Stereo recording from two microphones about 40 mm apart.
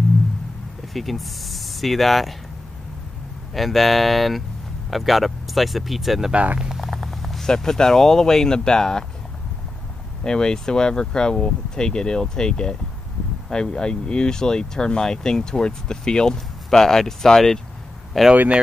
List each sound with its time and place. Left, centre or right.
0.9 s speech: centre
3.5 s speech: centre
6.3 s speech: right
6.7 s a sound: centre
7.4 s speech: centre
10.2 s speech: centre